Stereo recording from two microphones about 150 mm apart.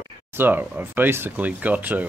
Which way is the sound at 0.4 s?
15° right (ahead or behind).